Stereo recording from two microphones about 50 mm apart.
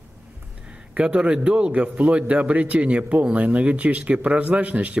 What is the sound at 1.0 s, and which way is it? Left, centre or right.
A man's voice, right.